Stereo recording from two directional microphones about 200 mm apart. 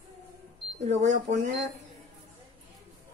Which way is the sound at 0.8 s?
35° right (ahead or behind).